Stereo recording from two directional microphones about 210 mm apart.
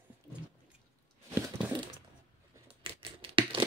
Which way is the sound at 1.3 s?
15° right (ahead or behind).